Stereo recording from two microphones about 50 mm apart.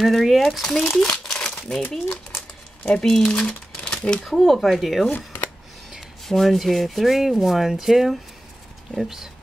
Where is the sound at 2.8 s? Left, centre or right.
Centre.